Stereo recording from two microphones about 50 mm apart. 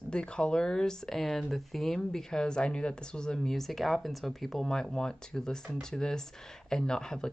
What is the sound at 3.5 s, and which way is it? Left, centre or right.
A woman's voice, centre.